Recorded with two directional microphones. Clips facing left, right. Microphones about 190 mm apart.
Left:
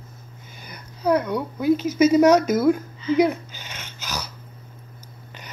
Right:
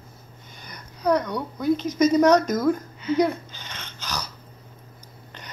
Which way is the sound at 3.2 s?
10° left (ahead or behind).